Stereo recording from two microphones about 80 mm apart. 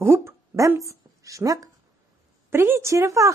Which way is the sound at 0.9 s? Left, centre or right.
Right.